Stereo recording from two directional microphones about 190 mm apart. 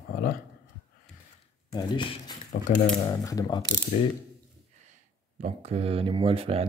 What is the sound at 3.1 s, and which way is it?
Mechanisms, 20° left (ahead or behind).